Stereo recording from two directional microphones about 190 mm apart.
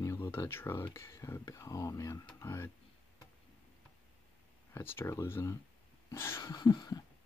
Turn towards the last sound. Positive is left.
turn(degrees=20)  # may be behind; listen again after turning